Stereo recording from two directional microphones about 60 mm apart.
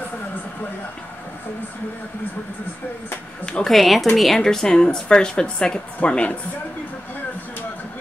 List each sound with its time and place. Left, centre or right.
3.6 s a woman's voice: centre; by 6.3 s left